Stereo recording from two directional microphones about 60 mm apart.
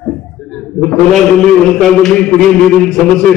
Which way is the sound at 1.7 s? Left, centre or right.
Centre.